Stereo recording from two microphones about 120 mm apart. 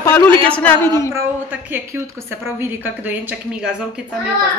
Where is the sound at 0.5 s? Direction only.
10° left (ahead or behind).